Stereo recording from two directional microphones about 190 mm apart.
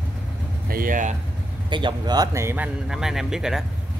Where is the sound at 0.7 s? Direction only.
45° right (ahead or behind).